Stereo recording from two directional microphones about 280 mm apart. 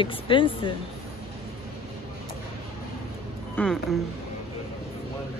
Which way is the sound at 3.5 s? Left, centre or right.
Centre.